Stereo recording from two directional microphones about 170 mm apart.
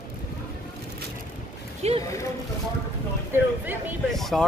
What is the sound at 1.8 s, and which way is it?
Speech, 40° right (ahead or behind).